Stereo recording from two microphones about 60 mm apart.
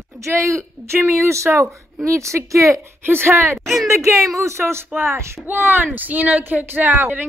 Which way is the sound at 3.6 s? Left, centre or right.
Centre.